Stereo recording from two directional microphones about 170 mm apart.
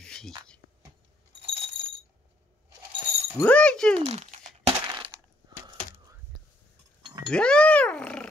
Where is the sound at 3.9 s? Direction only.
40° right (ahead or behind).